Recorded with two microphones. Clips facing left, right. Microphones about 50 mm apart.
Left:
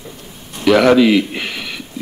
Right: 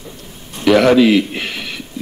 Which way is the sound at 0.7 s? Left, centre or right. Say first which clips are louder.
Even; centre.